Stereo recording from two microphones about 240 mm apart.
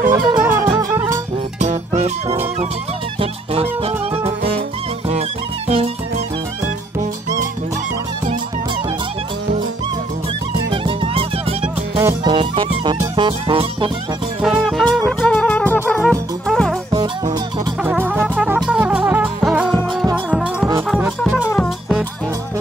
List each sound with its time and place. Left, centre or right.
0.1 s music: centre
1.6 s music: right
3.8 s music: right
5.7 s music: right
10.7 s music: right
12.0 s music: centre
14.4 s music: centre
16.9 s music: centre
21.2 s music: centre